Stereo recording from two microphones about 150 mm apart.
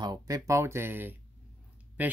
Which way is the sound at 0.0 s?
25° right (ahead or behind).